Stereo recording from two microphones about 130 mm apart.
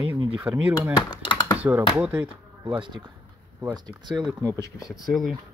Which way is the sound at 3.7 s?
35° right (ahead or behind).